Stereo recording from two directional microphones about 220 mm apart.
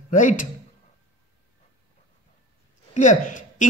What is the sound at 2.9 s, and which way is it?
Speech, 35° left (ahead or behind).